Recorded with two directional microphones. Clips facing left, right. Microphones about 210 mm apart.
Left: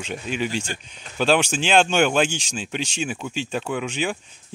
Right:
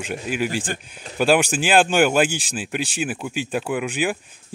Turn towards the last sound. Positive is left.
turn(degrees=-10)  # may be behind; listen again after turning